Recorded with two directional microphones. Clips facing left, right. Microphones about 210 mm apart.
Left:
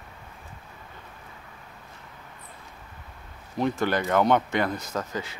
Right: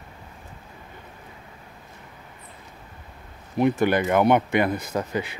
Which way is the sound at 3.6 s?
15° right (ahead or behind).